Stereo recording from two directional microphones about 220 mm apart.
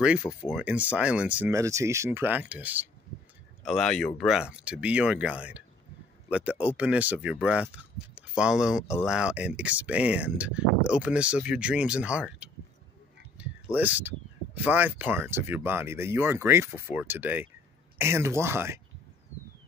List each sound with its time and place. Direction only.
0.0 s speech: 5° right (ahead or behind)